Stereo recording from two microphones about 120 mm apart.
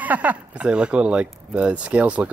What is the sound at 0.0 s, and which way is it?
Speech, 15° right (ahead or behind).